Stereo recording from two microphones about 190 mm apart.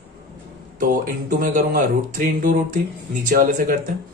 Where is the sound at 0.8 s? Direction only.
45° right (ahead or behind).